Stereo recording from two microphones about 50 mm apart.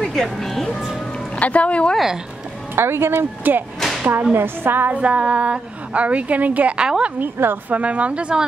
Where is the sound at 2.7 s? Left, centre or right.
Right.